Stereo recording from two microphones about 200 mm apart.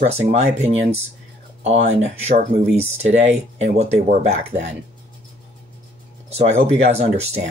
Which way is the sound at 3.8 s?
30° right (ahead or behind).